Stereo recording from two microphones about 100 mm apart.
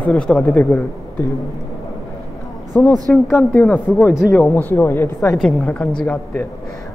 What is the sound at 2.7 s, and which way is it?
A woman's voice, 20° left (ahead or behind).